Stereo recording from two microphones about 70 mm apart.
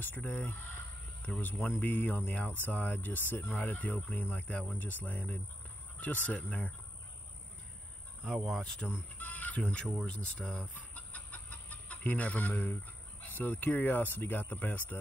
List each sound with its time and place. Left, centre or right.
0.0 s speech: left
1.8 s speech: left
8.3 s speech: centre
9.2 s fowl: left
9.8 s speech: centre
11.0 s chicken: left
13.3 s speech: left